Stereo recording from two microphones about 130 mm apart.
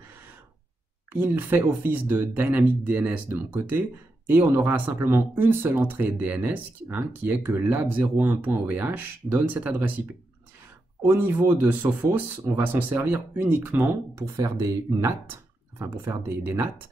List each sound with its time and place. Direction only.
1.1 s speech: 15° right (ahead or behind)